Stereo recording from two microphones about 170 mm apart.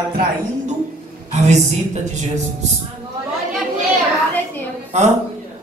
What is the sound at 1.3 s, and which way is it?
A man's voice, 40° right (ahead or behind).